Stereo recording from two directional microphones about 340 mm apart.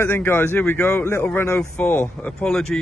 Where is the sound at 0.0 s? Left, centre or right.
Centre.